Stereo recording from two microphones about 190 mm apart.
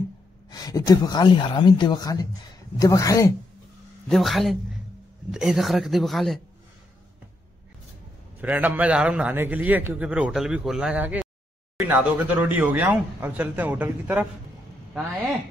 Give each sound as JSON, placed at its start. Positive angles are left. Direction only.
{"t": 0.5, "sound": "a man's voice", "side_deg": 20}
{"t": 4.1, "sound": "speech", "side_deg": 0}
{"t": 8.4, "sound": "a man's voice", "side_deg": -10}